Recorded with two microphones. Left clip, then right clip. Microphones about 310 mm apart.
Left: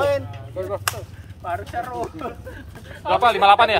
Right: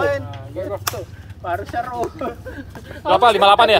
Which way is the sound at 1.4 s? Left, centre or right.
Right.